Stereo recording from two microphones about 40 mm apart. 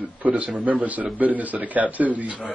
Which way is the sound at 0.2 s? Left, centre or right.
Right.